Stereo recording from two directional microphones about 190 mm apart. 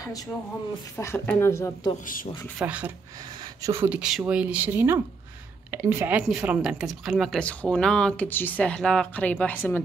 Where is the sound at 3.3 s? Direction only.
20° right (ahead or behind).